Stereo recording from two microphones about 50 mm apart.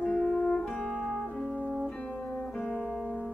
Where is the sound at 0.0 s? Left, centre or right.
Left.